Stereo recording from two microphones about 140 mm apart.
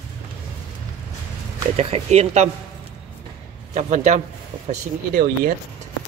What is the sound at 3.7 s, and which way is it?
Speech, 55° right (ahead or behind).